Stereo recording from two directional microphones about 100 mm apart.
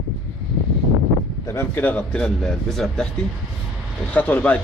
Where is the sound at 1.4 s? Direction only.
25° left (ahead or behind); by 3.1 s 5° left (ahead or behind).